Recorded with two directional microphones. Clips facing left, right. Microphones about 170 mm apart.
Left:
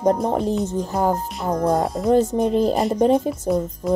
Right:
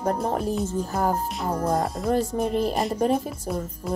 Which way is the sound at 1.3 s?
Centre (ahead or behind).